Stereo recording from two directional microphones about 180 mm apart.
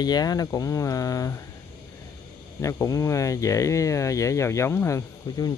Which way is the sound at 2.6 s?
15° left (ahead or behind).